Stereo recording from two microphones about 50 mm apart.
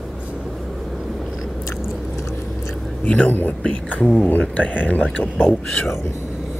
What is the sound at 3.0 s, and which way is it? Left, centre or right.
Speech, left.